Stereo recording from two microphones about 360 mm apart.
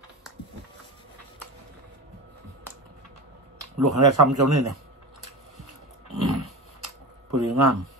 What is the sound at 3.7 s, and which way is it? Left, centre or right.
Speech, right.